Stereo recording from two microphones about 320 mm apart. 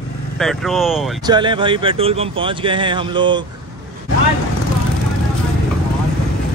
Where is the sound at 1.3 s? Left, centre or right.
Centre.